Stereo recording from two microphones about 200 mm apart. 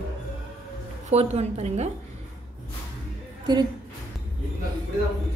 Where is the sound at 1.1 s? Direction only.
30° right (ahead or behind).